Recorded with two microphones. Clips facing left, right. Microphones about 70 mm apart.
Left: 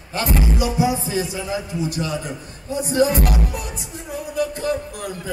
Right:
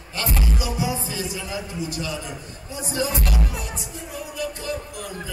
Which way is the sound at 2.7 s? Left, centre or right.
Left.